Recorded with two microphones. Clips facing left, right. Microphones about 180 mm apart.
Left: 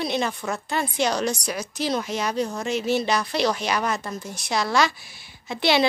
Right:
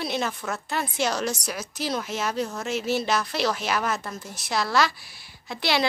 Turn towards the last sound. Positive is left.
turn(degrees=25)  # may be behind; listen again after turning